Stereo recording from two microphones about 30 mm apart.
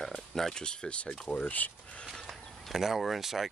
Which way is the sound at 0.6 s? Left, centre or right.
Left.